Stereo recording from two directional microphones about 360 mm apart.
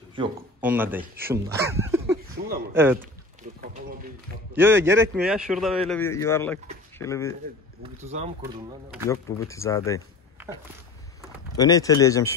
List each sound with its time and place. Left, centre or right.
0.1 s a man's voice: centre
3.6 s a sound: right
4.6 s speech: centre
7.8 s speech: centre
9.1 s speech: centre
11.5 s speech: centre